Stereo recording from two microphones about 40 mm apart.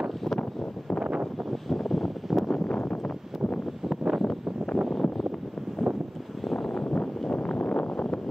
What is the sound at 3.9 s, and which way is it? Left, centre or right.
Wind noise, centre.